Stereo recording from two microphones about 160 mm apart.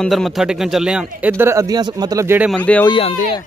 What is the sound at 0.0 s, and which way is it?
A man's voice, centre (ahead or behind).